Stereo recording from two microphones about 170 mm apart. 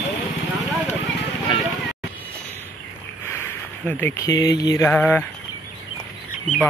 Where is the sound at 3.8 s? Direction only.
10° left (ahead or behind).